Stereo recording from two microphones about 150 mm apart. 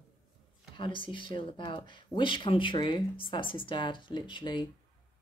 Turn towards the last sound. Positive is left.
turn(degrees=30)  # may be behind; listen again after turning